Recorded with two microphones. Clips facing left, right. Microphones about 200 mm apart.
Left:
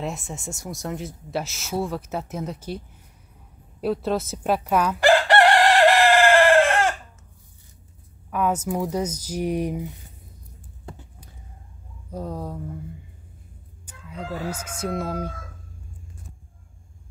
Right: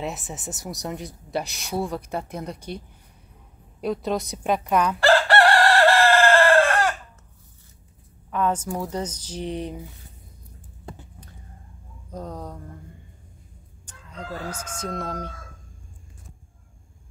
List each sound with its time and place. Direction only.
0.0 s speech: centre (ahead or behind)
3.8 s speech: 5° left (ahead or behind)
5.0 s chicken: 15° left (ahead or behind)
8.3 s speech: 10° left (ahead or behind)
12.1 s speech: 10° left (ahead or behind)
13.8 s chicken: 10° left (ahead or behind)